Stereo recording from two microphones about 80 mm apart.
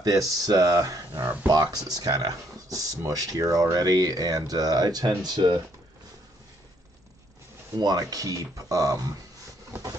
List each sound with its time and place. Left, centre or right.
0.0 s speech: right
7.7 s speech: right